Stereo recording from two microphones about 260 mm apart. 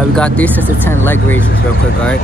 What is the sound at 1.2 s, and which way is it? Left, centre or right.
Speech, left.